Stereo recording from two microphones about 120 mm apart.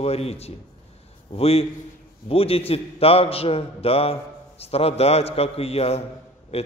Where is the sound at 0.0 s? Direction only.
55° left (ahead or behind).